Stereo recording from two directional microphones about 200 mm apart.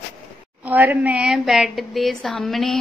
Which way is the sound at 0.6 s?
10° right (ahead or behind).